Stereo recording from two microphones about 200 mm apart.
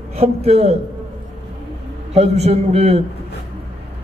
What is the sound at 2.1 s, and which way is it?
Speech, 30° right (ahead or behind).